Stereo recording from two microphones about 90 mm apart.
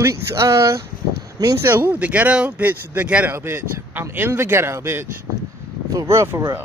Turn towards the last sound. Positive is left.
turn(degrees=-35)  # may be behind; listen again after turning